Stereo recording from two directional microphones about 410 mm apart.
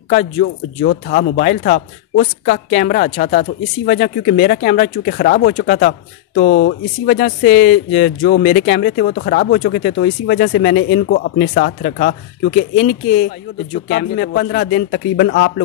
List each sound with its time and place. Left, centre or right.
0.1 s speech: left
13.8 s speech: left